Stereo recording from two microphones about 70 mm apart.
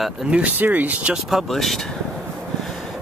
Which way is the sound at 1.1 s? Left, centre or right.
Centre.